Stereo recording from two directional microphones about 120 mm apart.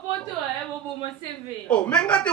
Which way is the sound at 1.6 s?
10° left (ahead or behind).